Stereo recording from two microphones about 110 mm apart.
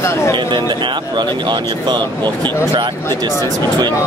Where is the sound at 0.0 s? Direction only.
25° left (ahead or behind).